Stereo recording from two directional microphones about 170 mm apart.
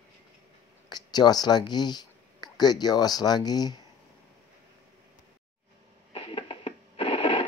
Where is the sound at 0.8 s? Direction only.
25° left (ahead or behind).